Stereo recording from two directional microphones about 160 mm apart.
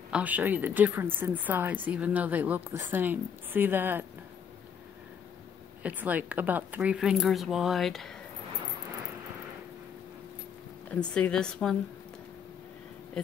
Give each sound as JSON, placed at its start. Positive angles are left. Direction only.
{"t": 0.1, "sound": "a woman's voice", "side_deg": -10}
{"t": 5.8, "sound": "speech", "side_deg": -10}
{"t": 10.9, "sound": "speech", "side_deg": 5}